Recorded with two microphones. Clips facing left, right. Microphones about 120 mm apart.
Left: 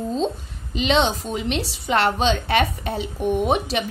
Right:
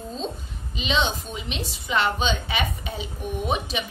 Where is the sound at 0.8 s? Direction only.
75° left (ahead or behind).